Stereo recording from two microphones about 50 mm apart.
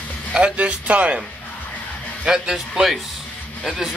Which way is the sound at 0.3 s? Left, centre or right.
Right.